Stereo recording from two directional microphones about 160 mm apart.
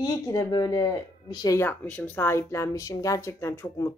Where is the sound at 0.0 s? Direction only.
25° left (ahead or behind).